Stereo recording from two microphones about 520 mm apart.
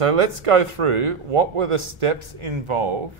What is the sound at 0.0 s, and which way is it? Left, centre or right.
A man's voice, right.